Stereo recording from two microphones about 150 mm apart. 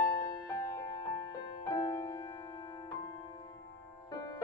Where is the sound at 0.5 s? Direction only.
20° left (ahead or behind).